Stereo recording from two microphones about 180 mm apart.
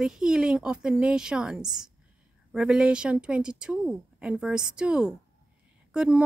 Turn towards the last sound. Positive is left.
turn(degrees=-5)  # may be behind; listen again after turning